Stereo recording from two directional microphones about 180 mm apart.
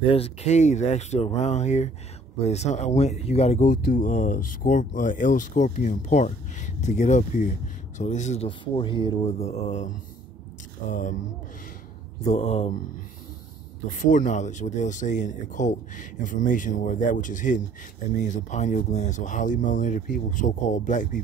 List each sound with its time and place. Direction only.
0.0 s speech: 30° left (ahead or behind)
8.5 s speech: 25° left (ahead or behind); by 11.1 s 45° left (ahead or behind)
12.3 s speech: 40° left (ahead or behind)
13.8 s speech: 45° left (ahead or behind)